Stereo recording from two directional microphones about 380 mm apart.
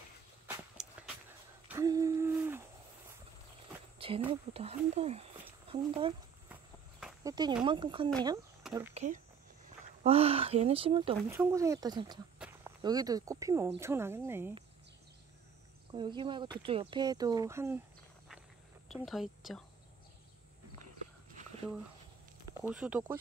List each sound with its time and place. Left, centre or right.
0.8 s a sound: centre
4.0 s speech: centre
5.4 s a sound: centre
7.0 s speech: centre
8.9 s speech: centre
15.9 s speech: centre
18.9 s a woman's voice: centre
22.6 s speech: centre